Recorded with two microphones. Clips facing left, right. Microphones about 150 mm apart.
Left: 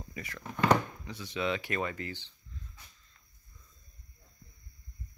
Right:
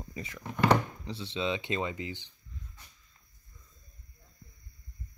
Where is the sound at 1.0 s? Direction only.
30° right (ahead or behind).